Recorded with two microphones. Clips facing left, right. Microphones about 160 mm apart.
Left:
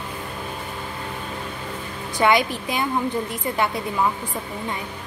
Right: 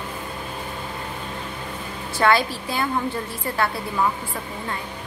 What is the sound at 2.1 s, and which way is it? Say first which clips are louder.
A woman's voice: left 1 dB; 15° left (ahead or behind).